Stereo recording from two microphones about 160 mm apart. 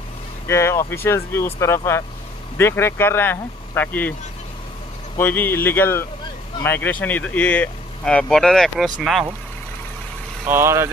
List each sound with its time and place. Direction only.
0.5 s speech: 15° left (ahead or behind)
5.1 s speech: 15° left (ahead or behind)
10.4 s speech: 15° right (ahead or behind)